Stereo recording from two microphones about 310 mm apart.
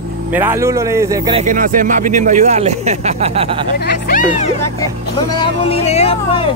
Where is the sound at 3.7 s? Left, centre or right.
Left.